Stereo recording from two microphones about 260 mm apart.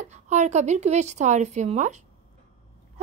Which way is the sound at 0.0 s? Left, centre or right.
Right.